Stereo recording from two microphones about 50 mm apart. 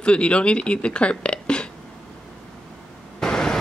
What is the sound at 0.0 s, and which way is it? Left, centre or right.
Speech, left.